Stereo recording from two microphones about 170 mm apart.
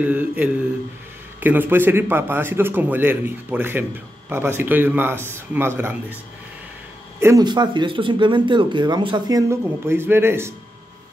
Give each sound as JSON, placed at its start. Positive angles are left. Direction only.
{"t": 0.0, "sound": "a man's voice", "side_deg": -10}
{"t": 7.2, "sound": "speech", "side_deg": -20}
{"t": 9.5, "sound": "a man's voice", "side_deg": -15}